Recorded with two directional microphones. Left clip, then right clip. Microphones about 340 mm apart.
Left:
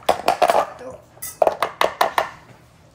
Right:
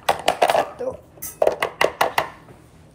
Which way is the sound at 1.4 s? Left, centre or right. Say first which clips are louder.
Left 1 dB; left.